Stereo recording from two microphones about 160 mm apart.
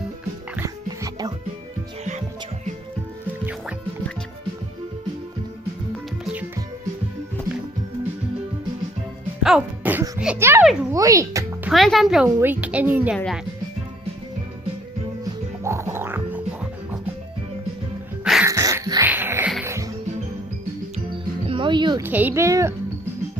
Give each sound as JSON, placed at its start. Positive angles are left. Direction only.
{"t": 0.6, "sound": "music", "side_deg": -20}
{"t": 2.0, "sound": "music", "side_deg": -50}
{"t": 9.4, "sound": "music", "side_deg": -5}
{"t": 10.6, "sound": "a child's voice", "side_deg": -5}
{"t": 10.9, "sound": "a child's voice", "side_deg": -20}
{"t": 11.7, "sound": "a woman's voice", "side_deg": 0}
{"t": 15.6, "sound": "music", "side_deg": -15}
{"t": 18.4, "sound": "a sound", "side_deg": -20}
{"t": 19.0, "sound": "music", "side_deg": -15}
{"t": 21.5, "sound": "music", "side_deg": -30}
{"t": 22.0, "sound": "a woman's voice", "side_deg": -10}